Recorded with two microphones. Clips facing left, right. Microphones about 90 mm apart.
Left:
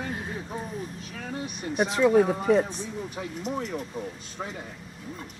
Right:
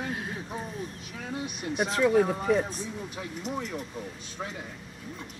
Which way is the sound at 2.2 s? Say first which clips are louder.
Left 3 dB; 5° left (ahead or behind).